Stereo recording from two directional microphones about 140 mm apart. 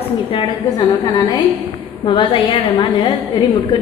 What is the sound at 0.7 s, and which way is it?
A woman's voice, 35° left (ahead or behind).